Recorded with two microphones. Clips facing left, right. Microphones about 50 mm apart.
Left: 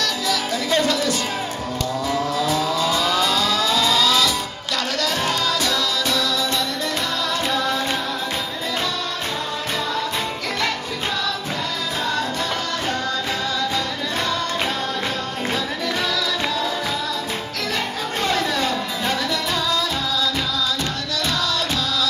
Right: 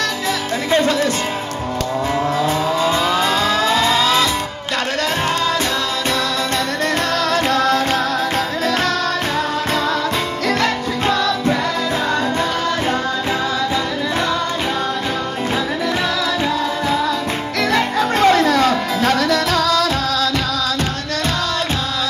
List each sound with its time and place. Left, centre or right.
0.7 s music: right
2.1 s vehicle: right
7.4 s music: right
10.6 s music: right
17.7 s music: right